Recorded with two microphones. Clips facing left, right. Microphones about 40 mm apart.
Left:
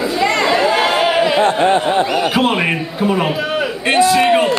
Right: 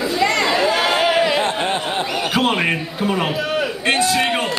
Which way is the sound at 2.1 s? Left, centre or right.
Centre.